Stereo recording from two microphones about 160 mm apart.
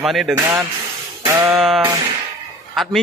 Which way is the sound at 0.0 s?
Centre (ahead or behind).